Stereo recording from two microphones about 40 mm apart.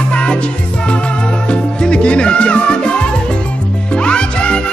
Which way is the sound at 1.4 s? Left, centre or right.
Left.